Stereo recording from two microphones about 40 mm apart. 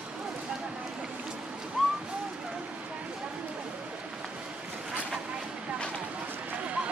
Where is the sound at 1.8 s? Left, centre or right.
Centre.